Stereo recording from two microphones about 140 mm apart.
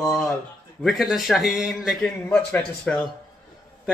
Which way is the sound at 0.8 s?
Centre (ahead or behind).